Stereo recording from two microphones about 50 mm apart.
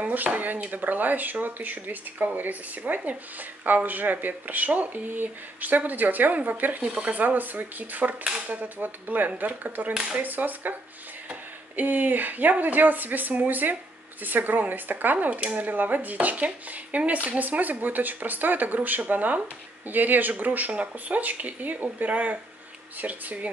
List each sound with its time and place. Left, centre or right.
0.0 s speech: right
6.9 s speech: right
7.2 s speech: right